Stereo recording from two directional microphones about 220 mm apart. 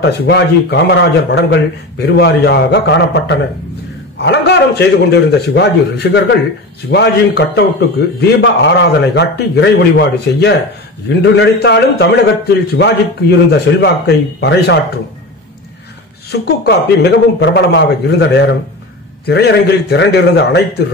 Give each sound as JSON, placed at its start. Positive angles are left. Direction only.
{"t": 0.0, "sound": "a man's voice", "side_deg": 50}
{"t": 16.3, "sound": "a man's voice", "side_deg": 50}